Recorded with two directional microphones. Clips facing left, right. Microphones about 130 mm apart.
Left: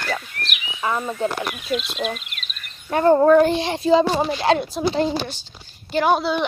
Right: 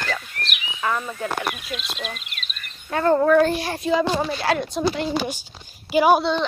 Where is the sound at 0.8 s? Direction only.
20° left (ahead or behind).